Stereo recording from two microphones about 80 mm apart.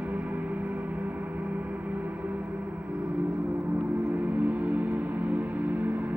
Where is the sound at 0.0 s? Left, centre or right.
Centre.